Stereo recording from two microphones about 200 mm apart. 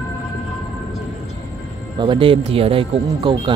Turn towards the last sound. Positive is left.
turn(degrees=-25)  # may be behind; listen again after turning